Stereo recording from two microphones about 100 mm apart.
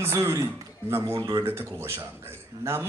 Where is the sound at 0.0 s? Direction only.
25° right (ahead or behind).